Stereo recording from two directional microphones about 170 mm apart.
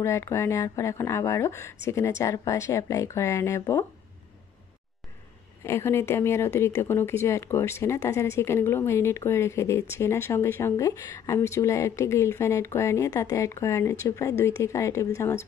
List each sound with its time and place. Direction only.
0.0 s speech: 15° left (ahead or behind)
5.6 s speech: 15° left (ahead or behind)